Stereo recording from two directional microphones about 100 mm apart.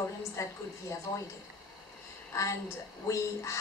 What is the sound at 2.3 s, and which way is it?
A woman's voice, 30° left (ahead or behind).